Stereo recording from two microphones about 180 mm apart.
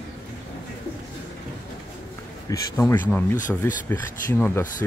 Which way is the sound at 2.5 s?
20° left (ahead or behind).